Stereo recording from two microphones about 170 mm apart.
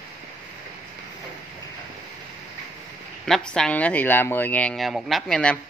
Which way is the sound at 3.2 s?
5° left (ahead or behind).